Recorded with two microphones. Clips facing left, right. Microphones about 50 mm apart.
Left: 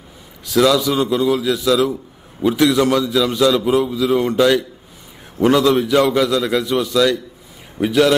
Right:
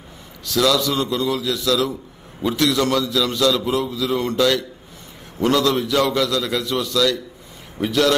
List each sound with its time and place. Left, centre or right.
0.5 s a man's voice: centre